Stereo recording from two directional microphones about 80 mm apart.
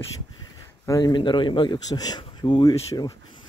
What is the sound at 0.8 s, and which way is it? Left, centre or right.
Speech, left.